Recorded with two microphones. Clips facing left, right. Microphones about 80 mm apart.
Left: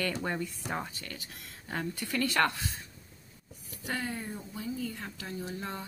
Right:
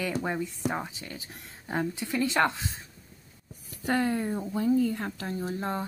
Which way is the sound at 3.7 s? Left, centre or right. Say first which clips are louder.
Right 9 dB; right.